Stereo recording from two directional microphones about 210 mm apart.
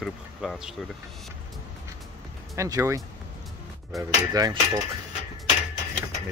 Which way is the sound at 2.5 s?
15° right (ahead or behind).